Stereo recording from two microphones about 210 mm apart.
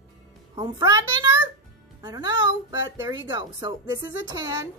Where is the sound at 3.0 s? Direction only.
15° right (ahead or behind).